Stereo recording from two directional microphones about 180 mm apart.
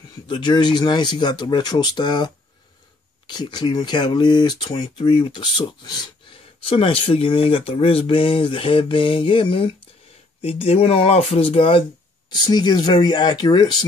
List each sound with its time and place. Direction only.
0.3 s speech: 25° left (ahead or behind)